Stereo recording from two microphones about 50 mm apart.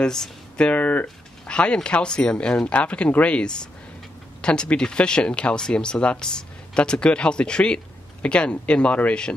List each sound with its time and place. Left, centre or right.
0.0 s speech: centre
0.7 s speech: left
1.4 s speech: centre